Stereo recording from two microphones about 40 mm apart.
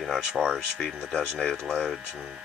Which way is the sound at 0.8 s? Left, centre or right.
Centre.